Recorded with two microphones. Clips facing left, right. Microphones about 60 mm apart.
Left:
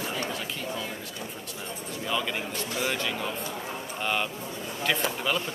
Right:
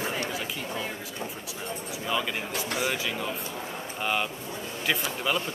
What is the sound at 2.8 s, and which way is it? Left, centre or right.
Speech, centre.